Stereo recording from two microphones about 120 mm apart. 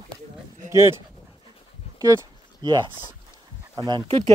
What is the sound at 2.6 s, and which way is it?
Speech, 40° right (ahead or behind).